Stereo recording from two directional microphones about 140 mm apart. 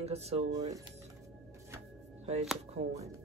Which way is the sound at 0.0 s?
50° right (ahead or behind).